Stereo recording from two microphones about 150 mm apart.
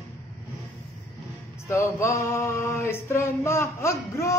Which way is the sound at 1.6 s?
15° left (ahead or behind).